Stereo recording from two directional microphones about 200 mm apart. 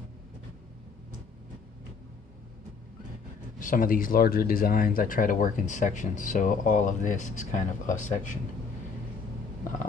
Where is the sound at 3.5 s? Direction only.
45° left (ahead or behind).